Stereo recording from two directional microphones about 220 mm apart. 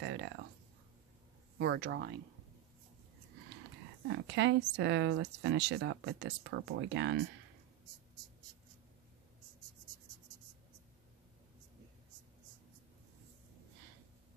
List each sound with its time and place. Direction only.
0.0 s speech: 55° right (ahead or behind)
1.6 s speech: 50° right (ahead or behind)
4.1 s speech: 55° right (ahead or behind)